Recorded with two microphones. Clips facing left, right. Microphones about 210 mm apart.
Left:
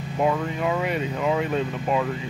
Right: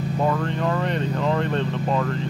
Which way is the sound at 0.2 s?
10° left (ahead or behind).